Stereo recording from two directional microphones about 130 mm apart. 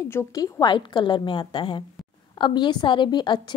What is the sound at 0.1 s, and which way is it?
A woman's voice, 25° left (ahead or behind).